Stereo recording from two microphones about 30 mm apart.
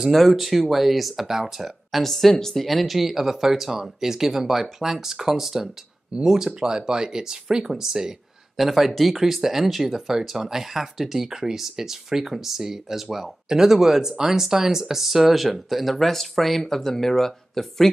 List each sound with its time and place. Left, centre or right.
0.1 s speech: centre
2.0 s speech: centre
8.5 s speech: centre